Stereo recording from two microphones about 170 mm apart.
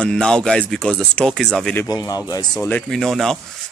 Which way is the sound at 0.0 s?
5° left (ahead or behind).